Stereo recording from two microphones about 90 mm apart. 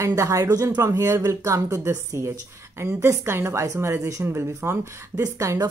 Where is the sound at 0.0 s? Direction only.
35° right (ahead or behind).